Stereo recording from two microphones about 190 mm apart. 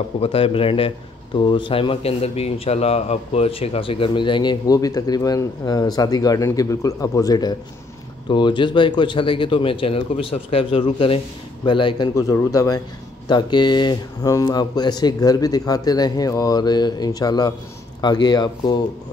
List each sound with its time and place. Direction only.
0.2 s speech: 30° left (ahead or behind)